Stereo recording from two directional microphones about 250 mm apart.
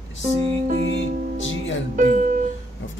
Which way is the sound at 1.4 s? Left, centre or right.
Left.